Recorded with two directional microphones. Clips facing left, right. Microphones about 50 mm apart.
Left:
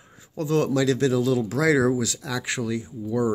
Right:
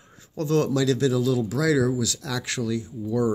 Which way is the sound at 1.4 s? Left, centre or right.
Left.